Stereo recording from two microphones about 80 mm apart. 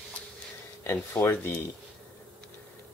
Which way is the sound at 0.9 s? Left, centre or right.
Left.